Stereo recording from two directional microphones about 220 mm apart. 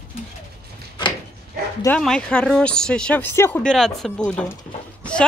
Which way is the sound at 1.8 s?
5° left (ahead or behind).